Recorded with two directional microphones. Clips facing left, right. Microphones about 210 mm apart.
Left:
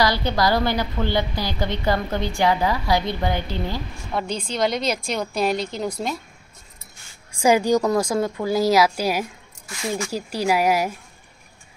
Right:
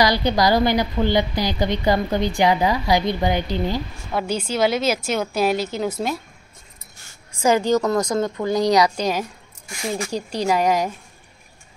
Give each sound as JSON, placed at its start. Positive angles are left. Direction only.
{"t": 0.0, "sound": "a woman's voice", "side_deg": -15}
{"t": 4.1, "sound": "a woman's voice", "side_deg": -5}
{"t": 7.3, "sound": "a woman's voice", "side_deg": 10}
{"t": 9.7, "sound": "a woman's voice", "side_deg": -25}
{"t": 10.1, "sound": "a woman's voice", "side_deg": 5}